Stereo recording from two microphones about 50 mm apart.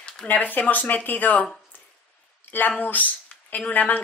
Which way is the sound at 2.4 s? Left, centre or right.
Left.